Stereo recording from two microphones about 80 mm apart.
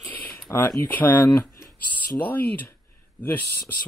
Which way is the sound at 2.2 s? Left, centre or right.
Centre.